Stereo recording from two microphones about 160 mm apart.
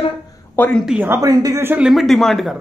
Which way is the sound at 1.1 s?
20° right (ahead or behind).